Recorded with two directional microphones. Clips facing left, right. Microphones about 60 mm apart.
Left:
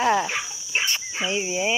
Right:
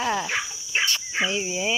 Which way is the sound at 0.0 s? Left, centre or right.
Left.